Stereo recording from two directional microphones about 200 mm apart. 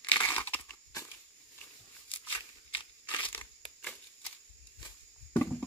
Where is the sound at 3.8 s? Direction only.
5° left (ahead or behind).